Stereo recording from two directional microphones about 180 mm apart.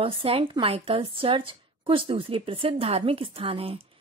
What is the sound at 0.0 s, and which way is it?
Speech, 30° right (ahead or behind).